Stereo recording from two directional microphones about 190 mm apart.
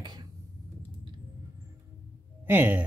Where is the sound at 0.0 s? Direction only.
20° right (ahead or behind).